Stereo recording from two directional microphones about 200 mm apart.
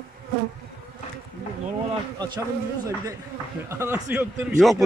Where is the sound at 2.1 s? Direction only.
20° right (ahead or behind).